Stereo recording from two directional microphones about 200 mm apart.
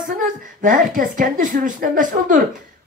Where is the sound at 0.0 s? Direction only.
40° right (ahead or behind).